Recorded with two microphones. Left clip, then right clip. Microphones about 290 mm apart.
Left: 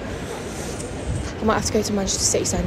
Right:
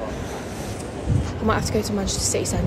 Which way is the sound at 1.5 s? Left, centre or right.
Centre.